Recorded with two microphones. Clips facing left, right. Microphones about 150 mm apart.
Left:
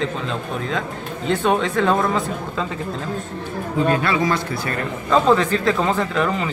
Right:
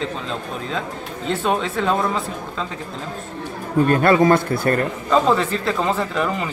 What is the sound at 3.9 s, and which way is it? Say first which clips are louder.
Speech: right 8 dB; 50° right (ahead or behind).